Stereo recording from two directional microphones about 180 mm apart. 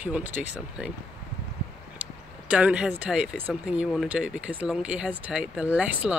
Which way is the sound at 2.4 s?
5° right (ahead or behind).